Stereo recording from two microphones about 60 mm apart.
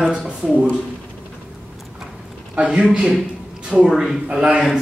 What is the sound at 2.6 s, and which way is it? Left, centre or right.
Speech, centre.